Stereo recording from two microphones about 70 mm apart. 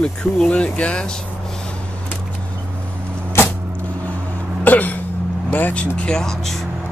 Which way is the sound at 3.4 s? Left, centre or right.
Left.